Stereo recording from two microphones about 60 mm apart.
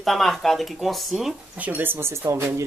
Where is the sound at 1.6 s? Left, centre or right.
Right.